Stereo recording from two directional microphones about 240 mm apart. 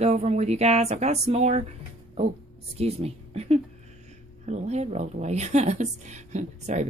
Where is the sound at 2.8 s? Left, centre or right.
Right.